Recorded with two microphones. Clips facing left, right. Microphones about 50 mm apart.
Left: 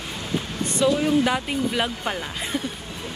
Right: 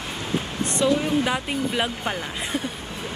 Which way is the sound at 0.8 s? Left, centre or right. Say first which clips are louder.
Left 2 dB; centre.